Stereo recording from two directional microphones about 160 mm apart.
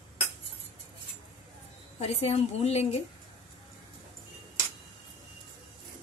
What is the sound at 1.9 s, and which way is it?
A woman's voice, 40° left (ahead or behind).